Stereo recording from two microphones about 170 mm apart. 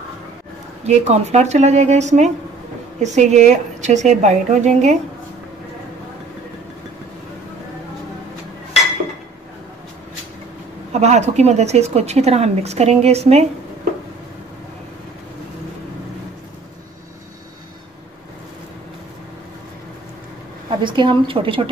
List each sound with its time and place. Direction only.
0.8 s a woman's voice: 40° right (ahead or behind)
10.9 s a woman's voice: 40° right (ahead or behind)
20.8 s a woman's voice: 30° right (ahead or behind)